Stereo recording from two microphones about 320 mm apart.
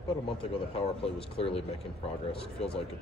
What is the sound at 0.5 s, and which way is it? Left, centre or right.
A man's voice, centre.